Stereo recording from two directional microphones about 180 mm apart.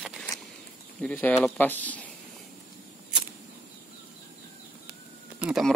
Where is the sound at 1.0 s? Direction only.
10° left (ahead or behind).